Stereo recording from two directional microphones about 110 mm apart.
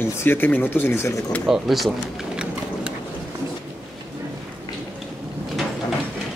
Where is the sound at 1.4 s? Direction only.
5° right (ahead or behind).